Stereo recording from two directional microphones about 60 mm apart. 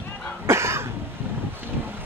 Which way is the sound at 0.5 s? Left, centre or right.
Right.